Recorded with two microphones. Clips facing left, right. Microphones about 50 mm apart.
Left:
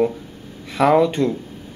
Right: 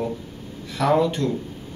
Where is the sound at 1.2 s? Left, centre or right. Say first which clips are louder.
Left 4 dB; centre.